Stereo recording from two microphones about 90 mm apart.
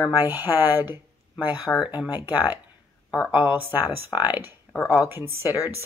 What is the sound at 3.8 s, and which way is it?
Speech, 50° left (ahead or behind).